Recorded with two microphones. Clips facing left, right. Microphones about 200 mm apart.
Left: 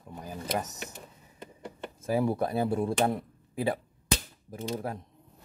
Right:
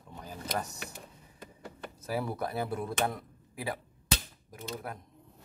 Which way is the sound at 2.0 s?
20° left (ahead or behind).